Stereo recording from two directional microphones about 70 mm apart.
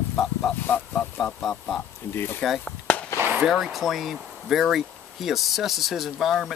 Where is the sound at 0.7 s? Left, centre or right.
Left.